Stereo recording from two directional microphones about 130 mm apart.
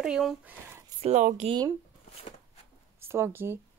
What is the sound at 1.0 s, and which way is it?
Speech, 60° right (ahead or behind).